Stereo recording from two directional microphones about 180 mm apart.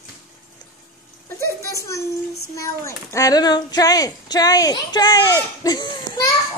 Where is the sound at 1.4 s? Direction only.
15° left (ahead or behind).